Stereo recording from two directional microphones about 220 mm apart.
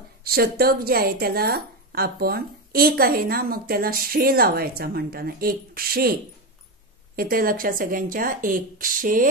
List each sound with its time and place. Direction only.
0.2 s a woman's voice: 45° right (ahead or behind)
7.2 s speech: 40° right (ahead or behind)